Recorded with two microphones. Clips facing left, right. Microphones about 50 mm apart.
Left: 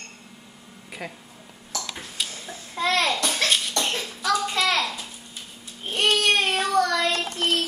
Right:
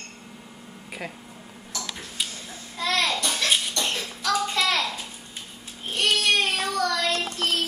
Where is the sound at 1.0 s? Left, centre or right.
Centre.